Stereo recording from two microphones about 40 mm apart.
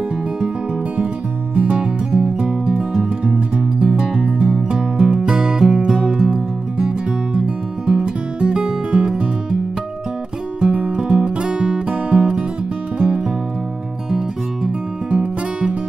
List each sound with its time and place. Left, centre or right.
1.5 s music: right
1.8 s music: right
10.6 s music: right
11.9 s music: right
15.0 s music: right